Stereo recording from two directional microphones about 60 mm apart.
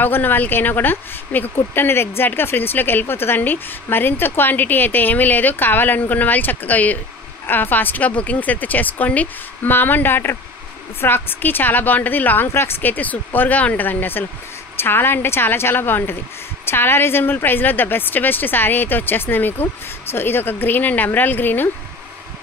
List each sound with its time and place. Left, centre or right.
0.0 s speech: left